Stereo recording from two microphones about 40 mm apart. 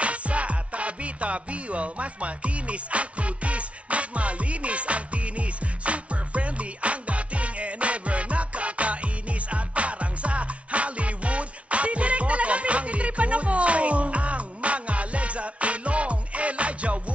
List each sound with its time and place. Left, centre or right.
0.0 s music: right